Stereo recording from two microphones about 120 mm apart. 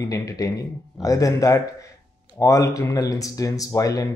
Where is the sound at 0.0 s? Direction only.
30° left (ahead or behind).